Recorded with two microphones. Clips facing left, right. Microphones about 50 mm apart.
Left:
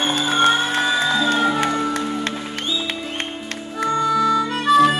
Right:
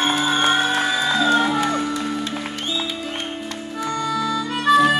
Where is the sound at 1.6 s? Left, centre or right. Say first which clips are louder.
Left 1 dB; centre.